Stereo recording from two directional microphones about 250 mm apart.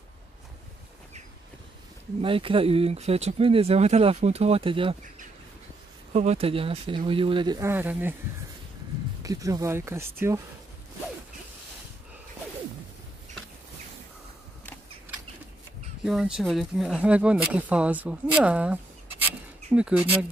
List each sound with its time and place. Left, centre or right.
2.2 s speech: right
6.1 s speech: right; by 8.2 s centre
9.2 s speech: centre
16.0 s speech: centre